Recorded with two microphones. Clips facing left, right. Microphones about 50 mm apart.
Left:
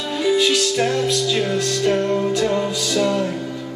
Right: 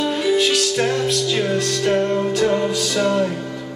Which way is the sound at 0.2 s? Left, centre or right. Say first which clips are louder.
Left 3 dB; centre.